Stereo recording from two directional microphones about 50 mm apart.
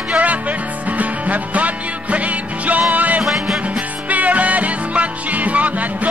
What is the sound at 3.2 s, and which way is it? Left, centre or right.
Music, centre.